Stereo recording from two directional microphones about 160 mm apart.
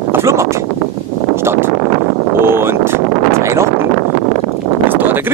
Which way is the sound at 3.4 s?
15° right (ahead or behind).